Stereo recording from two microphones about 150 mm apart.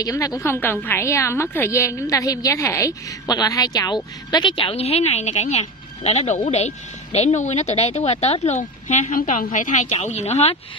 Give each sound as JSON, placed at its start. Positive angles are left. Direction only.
{"t": 0.0, "sound": "a woman's voice", "side_deg": 25}
{"t": 8.8, "sound": "a woman's voice", "side_deg": 60}